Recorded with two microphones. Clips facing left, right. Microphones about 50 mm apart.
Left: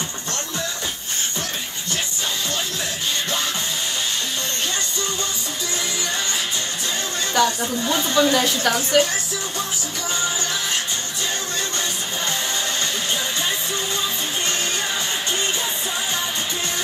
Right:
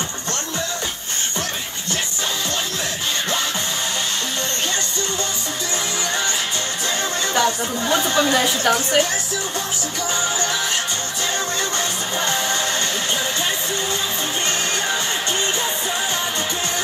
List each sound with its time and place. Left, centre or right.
7.4 s speech: centre